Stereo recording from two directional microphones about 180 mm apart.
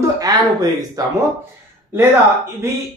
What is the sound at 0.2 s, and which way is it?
Speech, 20° right (ahead or behind).